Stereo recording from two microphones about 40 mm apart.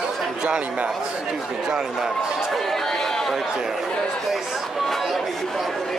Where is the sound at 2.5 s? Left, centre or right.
Centre.